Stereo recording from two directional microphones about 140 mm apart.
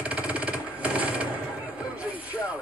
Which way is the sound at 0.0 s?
10° right (ahead or behind).